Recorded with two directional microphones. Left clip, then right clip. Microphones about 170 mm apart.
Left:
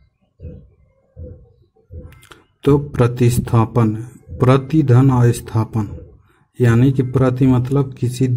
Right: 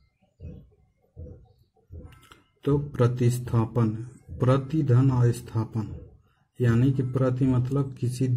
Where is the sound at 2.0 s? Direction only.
25° left (ahead or behind).